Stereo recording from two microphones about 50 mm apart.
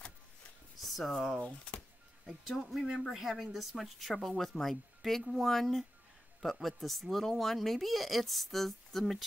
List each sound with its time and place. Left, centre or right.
0.7 s speech: centre
1.4 s speech: left
2.2 s speech: centre